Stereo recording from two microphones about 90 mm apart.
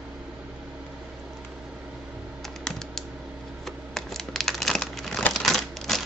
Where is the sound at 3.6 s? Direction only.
5° left (ahead or behind).